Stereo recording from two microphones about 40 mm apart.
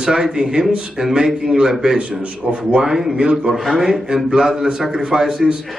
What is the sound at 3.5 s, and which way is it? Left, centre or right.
A man's voice, centre.